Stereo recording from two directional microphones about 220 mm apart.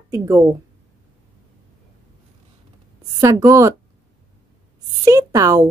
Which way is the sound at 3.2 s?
15° right (ahead or behind).